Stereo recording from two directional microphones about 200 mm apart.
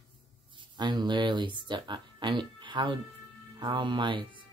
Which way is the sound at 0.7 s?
20° right (ahead or behind).